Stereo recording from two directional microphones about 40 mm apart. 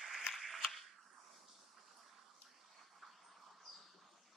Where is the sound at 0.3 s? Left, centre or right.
Centre.